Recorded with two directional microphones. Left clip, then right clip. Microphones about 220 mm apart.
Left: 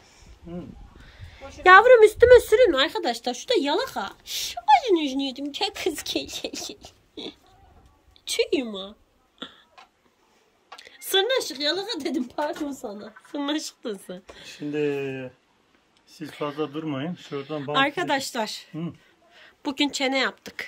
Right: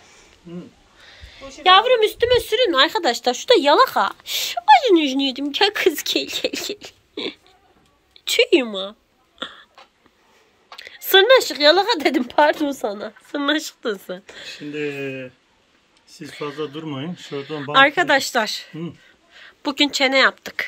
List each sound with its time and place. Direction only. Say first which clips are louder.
0.0 s a sound: right 4 dB; 5° left (ahead or behind)
1.6 s a woman's voice: left 1 dB; 25° left (ahead or behind)
2.7 s a woman's voice: right 6 dB; 10° left (ahead or behind)
9.4 s hiccup: right 8 dB; 5° left (ahead or behind)
10.8 s a woman's voice: right 9 dB; 5° left (ahead or behind)
14.8 s speech: even; 40° left (ahead or behind)
16.2 s speech: right 1 dB; 10° left (ahead or behind)